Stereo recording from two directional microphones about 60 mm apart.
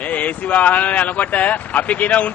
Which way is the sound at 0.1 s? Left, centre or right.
Left.